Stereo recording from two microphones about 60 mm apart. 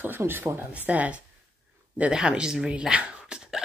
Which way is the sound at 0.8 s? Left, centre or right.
Right.